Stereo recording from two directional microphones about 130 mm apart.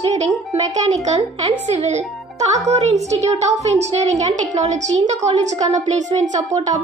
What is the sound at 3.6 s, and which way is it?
A woman's voice, 60° right (ahead or behind).